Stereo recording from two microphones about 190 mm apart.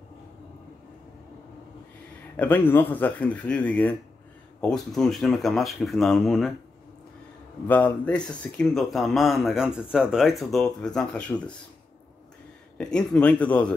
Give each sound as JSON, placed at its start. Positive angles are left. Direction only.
{"t": 2.3, "sound": "speech", "side_deg": 10}
{"t": 7.6, "sound": "speech", "side_deg": 10}
{"t": 12.7, "sound": "speech", "side_deg": 5}